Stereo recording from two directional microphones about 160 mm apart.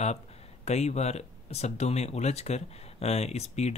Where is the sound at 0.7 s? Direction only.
45° left (ahead or behind).